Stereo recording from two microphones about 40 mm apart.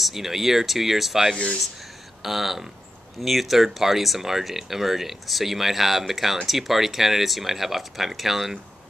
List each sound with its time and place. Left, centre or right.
0.0 s speech: centre
1.3 s speech: left
2.2 s speech: centre